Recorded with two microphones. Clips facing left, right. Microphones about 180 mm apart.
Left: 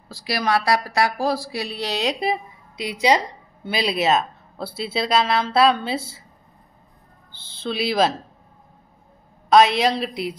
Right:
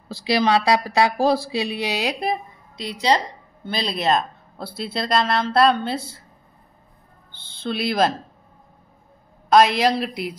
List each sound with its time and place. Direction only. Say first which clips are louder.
0.1 s speech: right 4 dB; 25° right (ahead or behind); by 6.2 s 5° left (ahead or behind)
7.5 s speech: left 1 dB; centre (ahead or behind)
9.5 s speech: even; centre (ahead or behind)